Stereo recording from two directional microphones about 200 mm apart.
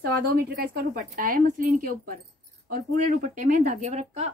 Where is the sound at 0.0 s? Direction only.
50° right (ahead or behind).